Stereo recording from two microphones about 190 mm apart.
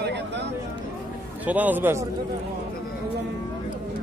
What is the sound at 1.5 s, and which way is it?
Speech, 10° right (ahead or behind).